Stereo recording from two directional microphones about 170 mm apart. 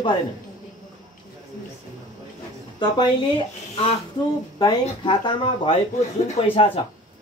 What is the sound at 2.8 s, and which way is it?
Speech, 25° left (ahead or behind).